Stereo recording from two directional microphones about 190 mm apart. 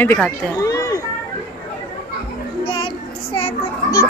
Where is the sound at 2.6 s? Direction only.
25° left (ahead or behind).